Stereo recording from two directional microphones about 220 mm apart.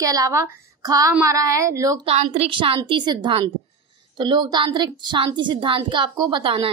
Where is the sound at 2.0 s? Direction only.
25° right (ahead or behind).